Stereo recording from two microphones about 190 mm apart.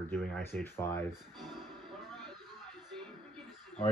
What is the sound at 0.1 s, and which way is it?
Speech, 5° left (ahead or behind).